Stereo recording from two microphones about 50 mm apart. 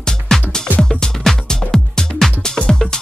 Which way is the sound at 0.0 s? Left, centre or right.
Centre.